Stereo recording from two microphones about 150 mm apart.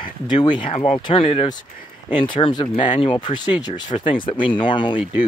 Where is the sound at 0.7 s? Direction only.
45° left (ahead or behind).